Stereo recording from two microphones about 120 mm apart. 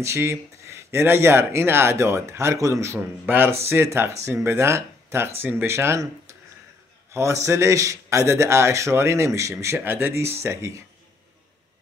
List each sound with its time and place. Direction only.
0.0 s a man's voice: 20° right (ahead or behind)